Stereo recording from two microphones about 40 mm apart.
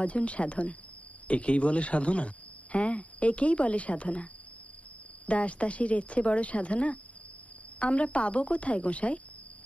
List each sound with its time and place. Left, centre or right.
0.0 s speech: left